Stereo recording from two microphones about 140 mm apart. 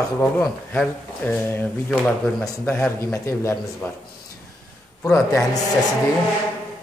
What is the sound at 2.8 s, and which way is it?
Speech, 20° left (ahead or behind).